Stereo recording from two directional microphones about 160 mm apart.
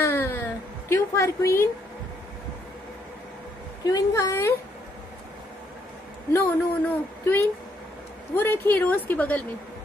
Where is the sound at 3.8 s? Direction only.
20° left (ahead or behind).